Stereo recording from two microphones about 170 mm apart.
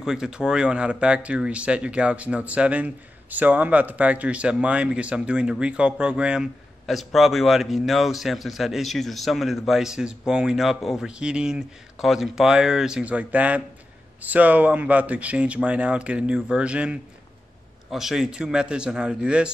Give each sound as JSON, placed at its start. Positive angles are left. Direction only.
{"t": 0.0, "sound": "speech", "side_deg": -5}